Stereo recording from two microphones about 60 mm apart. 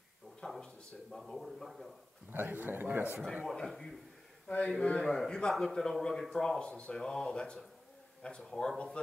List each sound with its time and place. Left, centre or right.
0.4 s a sound: centre
1.1 s speech: centre
2.3 s a man's voice: right
3.4 s speech: centre